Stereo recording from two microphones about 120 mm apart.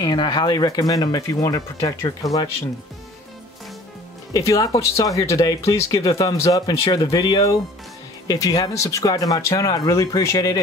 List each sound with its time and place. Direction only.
0.0 s speech: 35° left (ahead or behind)
4.3 s speech: 30° left (ahead or behind)